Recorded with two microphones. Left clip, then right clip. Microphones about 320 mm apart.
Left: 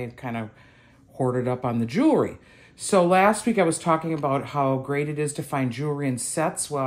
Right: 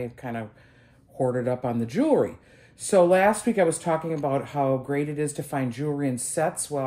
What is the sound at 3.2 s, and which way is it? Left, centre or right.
Speech, left.